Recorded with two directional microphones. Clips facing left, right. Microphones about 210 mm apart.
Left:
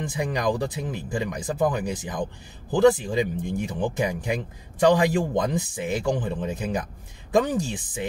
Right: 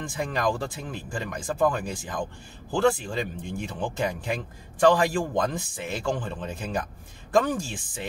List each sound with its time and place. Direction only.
0.2 s speech: 20° left (ahead or behind)